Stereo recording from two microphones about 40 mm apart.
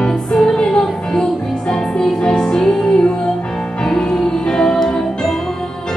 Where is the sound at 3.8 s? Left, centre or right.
Centre.